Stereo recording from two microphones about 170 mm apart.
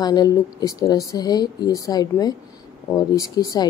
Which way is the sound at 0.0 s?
25° left (ahead or behind).